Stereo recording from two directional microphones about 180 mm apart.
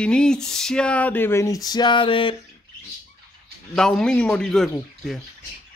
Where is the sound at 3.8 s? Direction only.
5° left (ahead or behind).